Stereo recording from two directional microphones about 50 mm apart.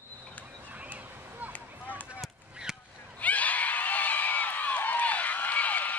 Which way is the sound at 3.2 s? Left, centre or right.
Left.